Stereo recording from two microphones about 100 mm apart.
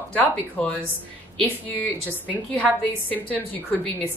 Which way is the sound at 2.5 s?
15° left (ahead or behind).